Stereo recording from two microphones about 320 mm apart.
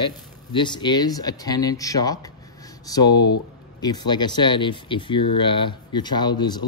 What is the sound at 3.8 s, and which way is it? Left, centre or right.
Speech, centre.